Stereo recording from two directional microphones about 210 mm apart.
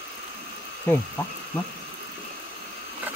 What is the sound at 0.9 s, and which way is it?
Speech, 10° left (ahead or behind).